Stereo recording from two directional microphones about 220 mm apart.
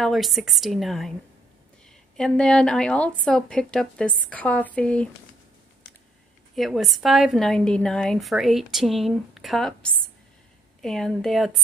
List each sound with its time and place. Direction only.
0.0 s a woman's voice: centre (ahead or behind)
2.1 s a woman's voice: 5° left (ahead or behind)
6.5 s a woman's voice: centre (ahead or behind)